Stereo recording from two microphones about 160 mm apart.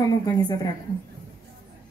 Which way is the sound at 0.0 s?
25° left (ahead or behind).